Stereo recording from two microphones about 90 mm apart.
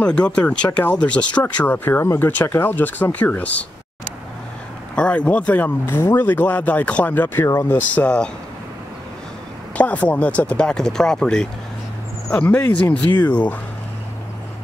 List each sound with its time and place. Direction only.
0.0 s speech: 10° left (ahead or behind)
4.9 s speech: 10° left (ahead or behind)
9.8 s speech: 15° left (ahead or behind)